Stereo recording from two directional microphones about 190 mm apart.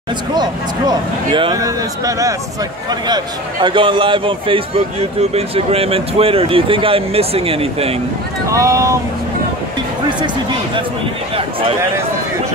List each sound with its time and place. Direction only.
0.3 s speech: 20° right (ahead or behind)
3.6 s speech: 25° right (ahead or behind)
8.5 s speech: 15° right (ahead or behind)